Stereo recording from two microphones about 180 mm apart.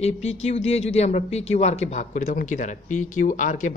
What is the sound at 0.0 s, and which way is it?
Speech, 35° left (ahead or behind).